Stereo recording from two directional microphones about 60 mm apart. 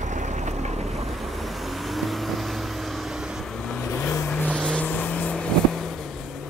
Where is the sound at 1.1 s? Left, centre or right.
Centre.